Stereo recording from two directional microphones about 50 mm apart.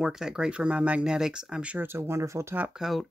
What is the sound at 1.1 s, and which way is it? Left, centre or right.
Speech, centre.